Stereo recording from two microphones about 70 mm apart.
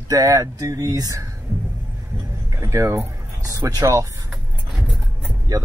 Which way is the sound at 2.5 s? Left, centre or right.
Right.